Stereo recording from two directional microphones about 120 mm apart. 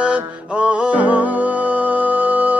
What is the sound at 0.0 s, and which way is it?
Music, 10° right (ahead or behind).